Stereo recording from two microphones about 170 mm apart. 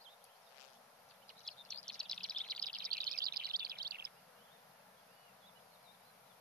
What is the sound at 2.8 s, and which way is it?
Chirp, 60° right (ahead or behind).